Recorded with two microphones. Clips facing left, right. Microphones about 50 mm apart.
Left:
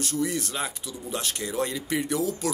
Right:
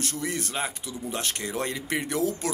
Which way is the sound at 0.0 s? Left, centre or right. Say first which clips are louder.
Left 3 dB; right.